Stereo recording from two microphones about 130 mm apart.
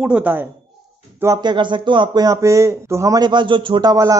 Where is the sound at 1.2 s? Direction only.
30° right (ahead or behind).